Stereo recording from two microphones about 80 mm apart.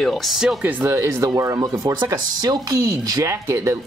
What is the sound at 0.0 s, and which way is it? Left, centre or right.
Speech, centre.